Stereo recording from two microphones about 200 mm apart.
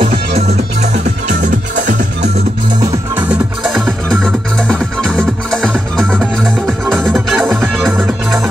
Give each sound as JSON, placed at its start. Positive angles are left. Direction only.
{"t": 0.0, "sound": "music", "side_deg": -30}
{"t": 2.8, "sound": "music", "side_deg": -5}